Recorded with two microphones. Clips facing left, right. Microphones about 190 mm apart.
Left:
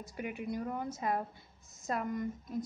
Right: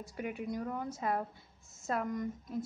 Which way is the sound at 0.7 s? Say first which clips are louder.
Even; 15° left (ahead or behind).